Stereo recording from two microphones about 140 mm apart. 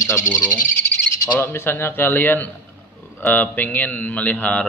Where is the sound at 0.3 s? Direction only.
25° left (ahead or behind).